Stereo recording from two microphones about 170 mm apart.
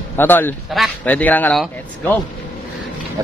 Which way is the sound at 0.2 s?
10° left (ahead or behind).